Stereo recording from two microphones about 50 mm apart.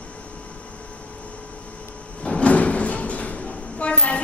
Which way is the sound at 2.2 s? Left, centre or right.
Left.